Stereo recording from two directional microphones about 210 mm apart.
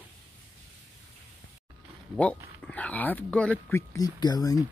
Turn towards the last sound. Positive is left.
turn(degrees=15)  # may be behind; listen again after turning